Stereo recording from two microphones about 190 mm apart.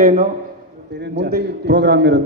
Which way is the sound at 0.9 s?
65° right (ahead or behind).